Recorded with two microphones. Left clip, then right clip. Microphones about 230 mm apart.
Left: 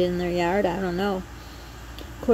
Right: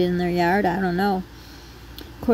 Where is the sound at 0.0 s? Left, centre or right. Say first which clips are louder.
Right 2 dB; right.